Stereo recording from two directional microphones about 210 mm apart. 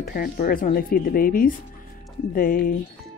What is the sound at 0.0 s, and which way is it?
Speech, 45° left (ahead or behind).